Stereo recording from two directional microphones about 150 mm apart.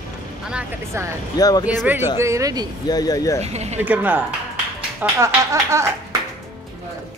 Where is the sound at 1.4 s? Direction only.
25° left (ahead or behind).